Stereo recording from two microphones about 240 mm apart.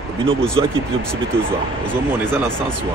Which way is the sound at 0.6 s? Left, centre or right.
Centre.